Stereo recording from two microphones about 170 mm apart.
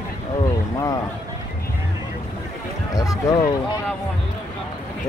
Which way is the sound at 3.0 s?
20° left (ahead or behind).